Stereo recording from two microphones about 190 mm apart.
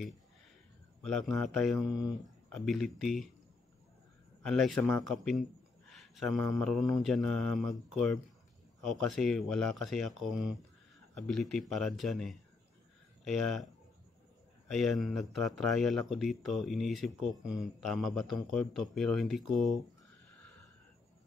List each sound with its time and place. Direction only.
1.0 s speech: centre (ahead or behind)
4.4 s speech: centre (ahead or behind)
14.7 s speech: centre (ahead or behind)